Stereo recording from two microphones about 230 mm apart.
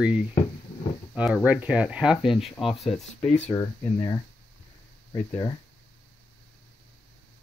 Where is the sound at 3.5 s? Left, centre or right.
Centre.